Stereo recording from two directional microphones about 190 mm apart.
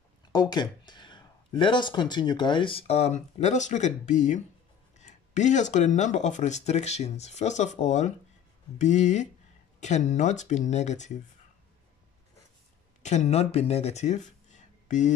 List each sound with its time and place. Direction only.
0.3 s speech: 20° left (ahead or behind); by 11.1 s 40° left (ahead or behind)
13.0 s speech: 40° left (ahead or behind)